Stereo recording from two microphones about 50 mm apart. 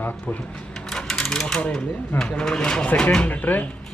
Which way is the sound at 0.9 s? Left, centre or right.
Centre.